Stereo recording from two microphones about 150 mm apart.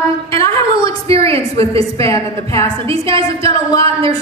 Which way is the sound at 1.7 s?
35° right (ahead or behind).